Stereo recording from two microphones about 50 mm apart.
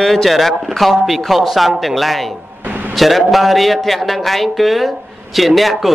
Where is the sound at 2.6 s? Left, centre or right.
Right.